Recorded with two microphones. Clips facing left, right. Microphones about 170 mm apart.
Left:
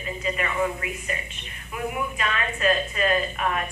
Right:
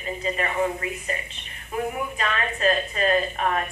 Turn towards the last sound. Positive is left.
turn(degrees=-35)  # may be behind; listen again after turning